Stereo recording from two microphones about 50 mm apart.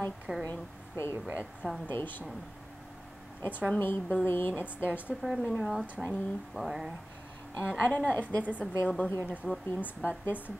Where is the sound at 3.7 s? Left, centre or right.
Left.